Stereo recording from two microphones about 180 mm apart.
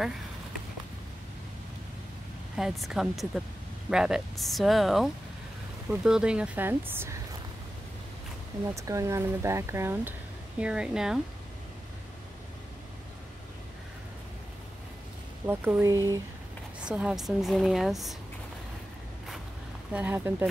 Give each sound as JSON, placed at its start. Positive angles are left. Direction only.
{"t": 2.5, "sound": "a woman's voice", "side_deg": 0}
{"t": 8.7, "sound": "a woman's voice", "side_deg": -15}
{"t": 15.4, "sound": "speech", "side_deg": -10}
{"t": 16.8, "sound": "a woman's voice", "side_deg": -5}
{"t": 19.9, "sound": "speech", "side_deg": -10}